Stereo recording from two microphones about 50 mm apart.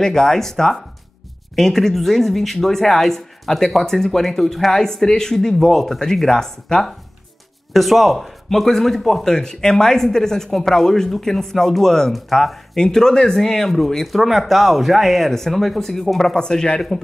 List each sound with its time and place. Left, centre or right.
0.0 s speech: centre
12.7 s speech: centre
16.3 s speech: centre